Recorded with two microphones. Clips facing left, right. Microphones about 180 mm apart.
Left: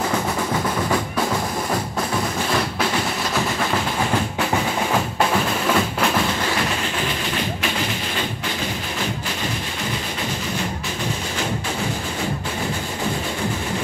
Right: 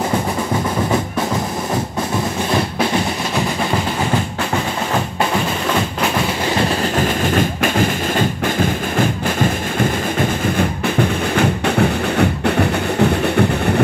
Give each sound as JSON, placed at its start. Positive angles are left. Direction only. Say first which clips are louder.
{"t": 6.8, "sound": "music", "louder": "right 8 dB", "side_deg": -45}
{"t": 11.0, "sound": "music", "louder": "right 11 dB", "side_deg": -65}